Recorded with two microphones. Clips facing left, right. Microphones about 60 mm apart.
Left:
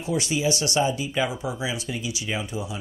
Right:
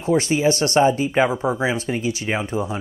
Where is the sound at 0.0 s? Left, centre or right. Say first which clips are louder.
Right 7 dB; right.